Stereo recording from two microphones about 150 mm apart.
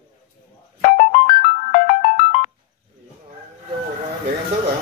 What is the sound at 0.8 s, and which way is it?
Ringtone, 60° left (ahead or behind).